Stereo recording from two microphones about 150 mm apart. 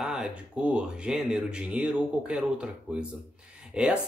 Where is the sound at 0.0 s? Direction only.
5° right (ahead or behind).